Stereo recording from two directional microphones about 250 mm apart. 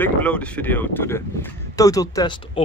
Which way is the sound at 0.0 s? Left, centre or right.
Centre.